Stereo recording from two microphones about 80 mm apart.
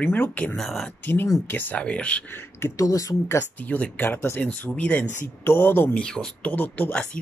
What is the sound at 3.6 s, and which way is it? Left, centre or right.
Speech, left.